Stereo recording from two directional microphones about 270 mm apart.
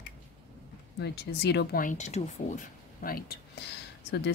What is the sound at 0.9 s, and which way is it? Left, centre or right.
A woman's voice, left.